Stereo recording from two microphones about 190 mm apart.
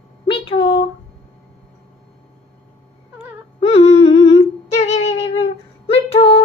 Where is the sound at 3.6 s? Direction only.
30° left (ahead or behind).